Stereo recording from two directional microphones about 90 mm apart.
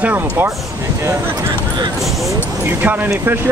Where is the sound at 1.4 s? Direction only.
50° right (ahead or behind).